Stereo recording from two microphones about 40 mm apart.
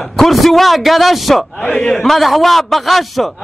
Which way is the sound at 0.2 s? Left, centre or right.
Centre.